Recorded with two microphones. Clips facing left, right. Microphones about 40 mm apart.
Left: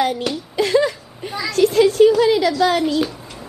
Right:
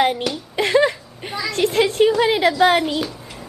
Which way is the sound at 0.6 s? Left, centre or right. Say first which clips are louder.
Even; right.